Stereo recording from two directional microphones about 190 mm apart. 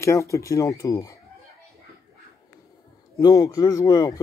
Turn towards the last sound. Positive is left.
turn(degrees=20)  # may be behind; listen again after turning